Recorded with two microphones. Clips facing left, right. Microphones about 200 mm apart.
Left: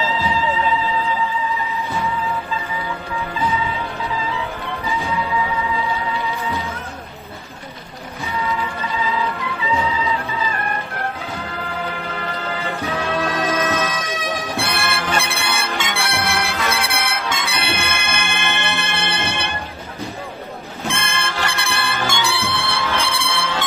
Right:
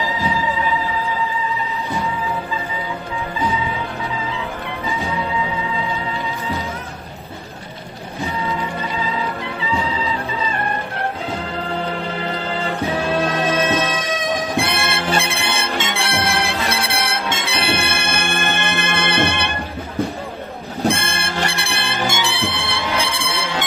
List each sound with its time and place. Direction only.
8.5 s music: 35° right (ahead or behind)
12.8 s music: 30° right (ahead or behind); by 19.5 s 60° right (ahead or behind)
20.8 s music: 35° right (ahead or behind); by 23.6 s 15° right (ahead or behind)